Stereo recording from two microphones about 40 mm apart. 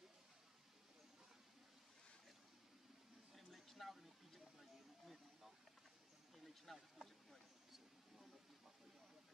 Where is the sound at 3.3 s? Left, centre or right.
Centre.